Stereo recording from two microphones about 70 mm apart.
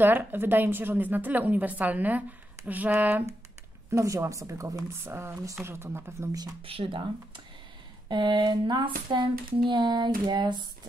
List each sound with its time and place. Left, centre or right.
0.0 s a woman's voice: right
3.9 s a woman's voice: right
5.0 s speech: right
8.1 s a sound: right